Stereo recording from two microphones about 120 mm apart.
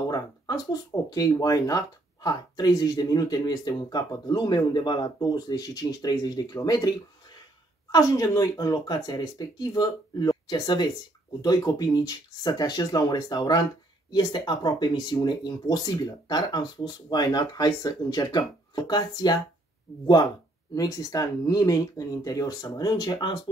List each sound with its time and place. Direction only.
0.1 s speech: 35° left (ahead or behind)
20.7 s speech: 30° left (ahead or behind)